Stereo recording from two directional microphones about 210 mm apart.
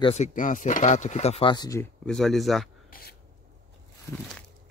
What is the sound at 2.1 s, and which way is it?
Speech, centre (ahead or behind).